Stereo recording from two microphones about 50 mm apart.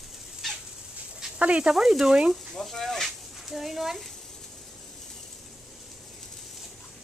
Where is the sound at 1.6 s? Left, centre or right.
Centre.